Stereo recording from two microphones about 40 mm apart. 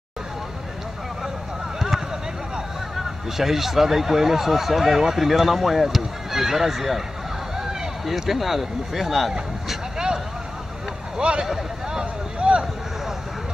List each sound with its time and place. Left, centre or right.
1.8 s a sound: centre
3.3 s speech: centre
8.0 s speech: centre
9.9 s vehicle: centre
11.1 s speech: right
11.9 s vehicle: right